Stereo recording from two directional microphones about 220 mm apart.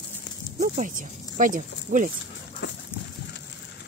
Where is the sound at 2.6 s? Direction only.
50° left (ahead or behind).